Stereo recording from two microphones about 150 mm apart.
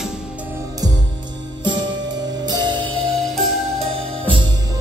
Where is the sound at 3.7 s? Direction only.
40° right (ahead or behind).